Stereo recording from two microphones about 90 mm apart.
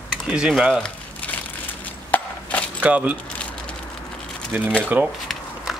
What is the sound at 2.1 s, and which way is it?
Chop, 20° left (ahead or behind).